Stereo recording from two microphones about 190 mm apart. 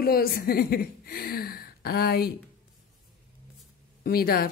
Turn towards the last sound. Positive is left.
turn(degrees=50)  # may be behind; listen again after turning